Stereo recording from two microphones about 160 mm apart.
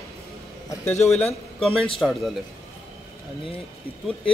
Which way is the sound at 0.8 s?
45° left (ahead or behind).